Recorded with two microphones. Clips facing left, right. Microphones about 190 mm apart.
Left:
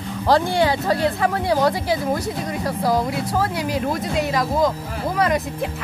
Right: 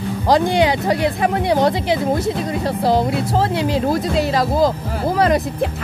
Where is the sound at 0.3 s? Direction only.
15° right (ahead or behind).